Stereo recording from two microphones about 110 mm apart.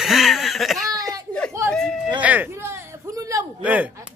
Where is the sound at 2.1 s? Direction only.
15° right (ahead or behind); by 3.4 s 30° right (ahead or behind).